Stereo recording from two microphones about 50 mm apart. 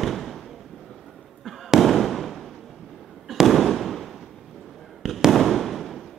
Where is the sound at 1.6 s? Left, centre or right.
Centre.